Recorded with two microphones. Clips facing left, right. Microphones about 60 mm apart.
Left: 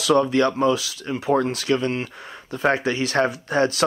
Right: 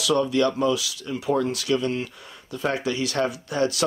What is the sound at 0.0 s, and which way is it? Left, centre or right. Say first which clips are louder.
Speech: left 3 dB; left.